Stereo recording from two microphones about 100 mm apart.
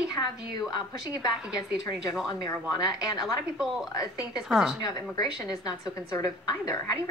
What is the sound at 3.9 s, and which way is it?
Speech, 35° left (ahead or behind).